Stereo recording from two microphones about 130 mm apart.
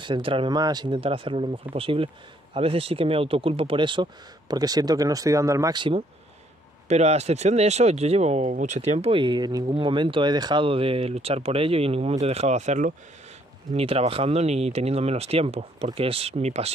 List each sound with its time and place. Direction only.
0.0 s speech: 40° right (ahead or behind); by 5.8 s 25° right (ahead or behind)
5.8 s speech: 40° right (ahead or behind)
6.9 s speech: 55° right (ahead or behind)
9.1 s speech: 35° right (ahead or behind); by 12.9 s 65° right (ahead or behind)
13.7 s speech: 50° right (ahead or behind)